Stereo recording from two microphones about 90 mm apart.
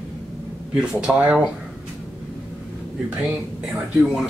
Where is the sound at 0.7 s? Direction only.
10° right (ahead or behind).